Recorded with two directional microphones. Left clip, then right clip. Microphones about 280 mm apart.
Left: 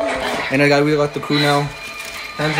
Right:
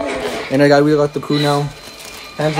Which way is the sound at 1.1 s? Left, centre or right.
Centre.